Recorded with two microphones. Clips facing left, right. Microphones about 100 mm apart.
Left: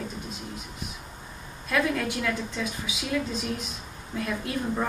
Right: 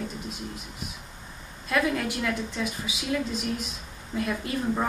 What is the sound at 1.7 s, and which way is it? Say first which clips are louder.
A woman's voice: even; 5° right (ahead or behind).